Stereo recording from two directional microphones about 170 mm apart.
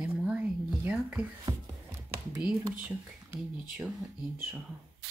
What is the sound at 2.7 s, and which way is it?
Speech, 10° right (ahead or behind).